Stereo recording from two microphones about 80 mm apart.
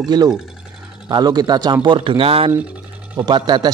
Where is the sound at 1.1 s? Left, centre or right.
Right.